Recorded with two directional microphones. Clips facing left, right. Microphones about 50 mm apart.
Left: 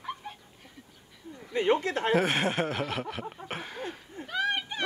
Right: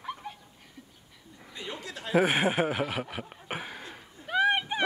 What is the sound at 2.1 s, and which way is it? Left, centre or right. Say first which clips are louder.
Speech: right 4 dB; centre.